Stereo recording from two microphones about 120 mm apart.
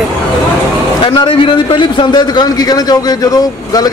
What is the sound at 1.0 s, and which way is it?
A man's voice, 40° left (ahead or behind).